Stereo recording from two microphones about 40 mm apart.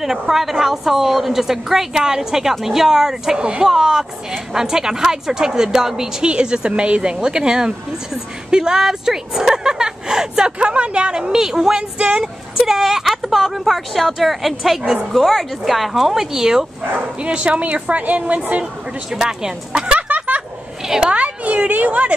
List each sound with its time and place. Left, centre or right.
0.0 s a woman's voice: centre
3.3 s a woman's voice: right
6.2 s a woman's voice: right
12.0 s speech: right
12.5 s a woman's voice: centre
17.2 s a woman's voice: right
19.2 s speech: right
20.0 s a sound: right
20.8 s a woman's voice: centre
21.1 s speech: right